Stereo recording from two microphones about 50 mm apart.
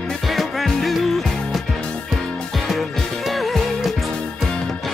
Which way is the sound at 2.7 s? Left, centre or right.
Centre.